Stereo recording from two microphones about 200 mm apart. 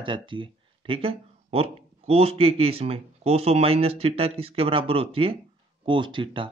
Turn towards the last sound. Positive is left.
turn(degrees=-25)  # may be behind; listen again after turning